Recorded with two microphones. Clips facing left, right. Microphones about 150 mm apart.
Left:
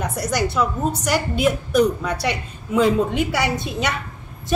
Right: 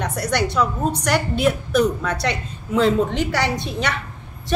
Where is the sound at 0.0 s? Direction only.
5° left (ahead or behind).